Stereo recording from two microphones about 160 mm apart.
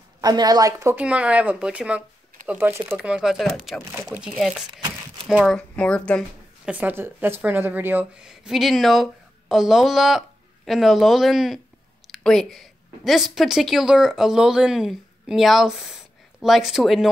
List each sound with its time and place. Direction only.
0.2 s a woman's voice: 25° right (ahead or behind)
0.9 s speech: 5° right (ahead or behind)
6.6 s a woman's voice: 10° right (ahead or behind)